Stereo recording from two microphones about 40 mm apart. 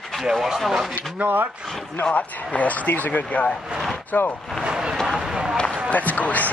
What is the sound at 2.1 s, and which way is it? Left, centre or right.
Speech, left.